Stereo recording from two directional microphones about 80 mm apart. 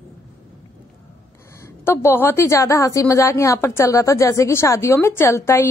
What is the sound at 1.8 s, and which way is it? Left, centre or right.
Speech, left.